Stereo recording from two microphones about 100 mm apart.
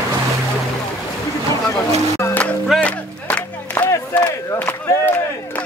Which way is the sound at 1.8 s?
30° left (ahead or behind).